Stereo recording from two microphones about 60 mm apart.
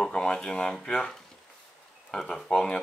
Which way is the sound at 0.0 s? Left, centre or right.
Centre.